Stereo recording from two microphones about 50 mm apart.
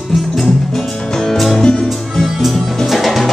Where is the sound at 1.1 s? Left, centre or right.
Centre.